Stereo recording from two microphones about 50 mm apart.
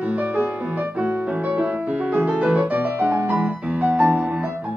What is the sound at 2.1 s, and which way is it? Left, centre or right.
Music, right.